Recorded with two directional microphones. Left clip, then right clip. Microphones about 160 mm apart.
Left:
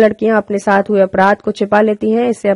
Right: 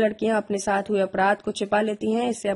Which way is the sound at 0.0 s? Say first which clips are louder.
Left 11 dB; 40° left (ahead or behind).